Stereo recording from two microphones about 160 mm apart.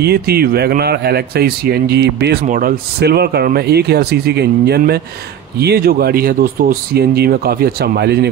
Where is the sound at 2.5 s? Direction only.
65° right (ahead or behind).